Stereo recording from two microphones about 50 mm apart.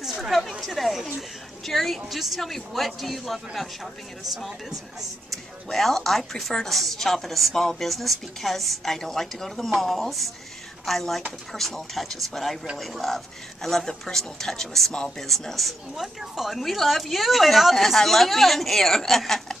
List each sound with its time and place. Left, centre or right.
0.0 s speech: centre